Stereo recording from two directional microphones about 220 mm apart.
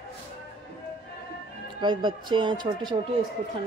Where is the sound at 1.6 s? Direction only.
20° right (ahead or behind).